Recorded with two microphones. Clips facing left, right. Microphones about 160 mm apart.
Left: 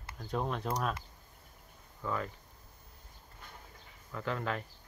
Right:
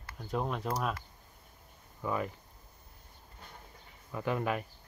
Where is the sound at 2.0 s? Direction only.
15° right (ahead or behind).